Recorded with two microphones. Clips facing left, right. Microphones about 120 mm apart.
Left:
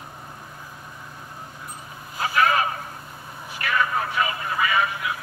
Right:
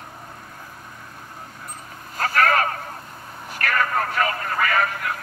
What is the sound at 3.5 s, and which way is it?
Speech, 55° right (ahead or behind).